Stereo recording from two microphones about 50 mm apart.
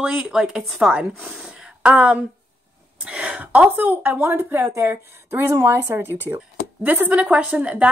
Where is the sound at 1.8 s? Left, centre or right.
Right.